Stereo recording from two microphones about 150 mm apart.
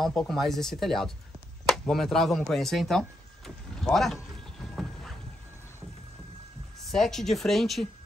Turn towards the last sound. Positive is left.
turn(degrees=0)  # may be behind; listen again after turning